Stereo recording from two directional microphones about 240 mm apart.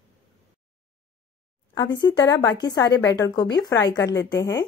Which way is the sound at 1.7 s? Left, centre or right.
Centre.